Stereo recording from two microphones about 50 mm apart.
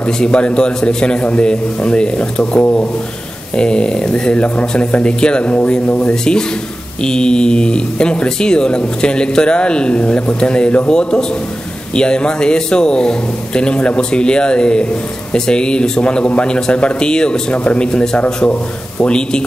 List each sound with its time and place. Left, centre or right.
0.0 s speech: left